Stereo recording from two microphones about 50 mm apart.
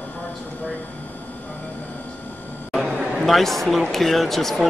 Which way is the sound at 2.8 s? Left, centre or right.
Centre.